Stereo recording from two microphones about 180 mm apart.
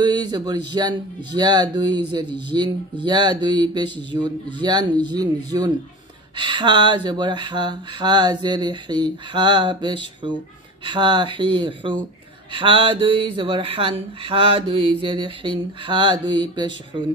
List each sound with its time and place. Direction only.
0.0 s speech: 20° right (ahead or behind)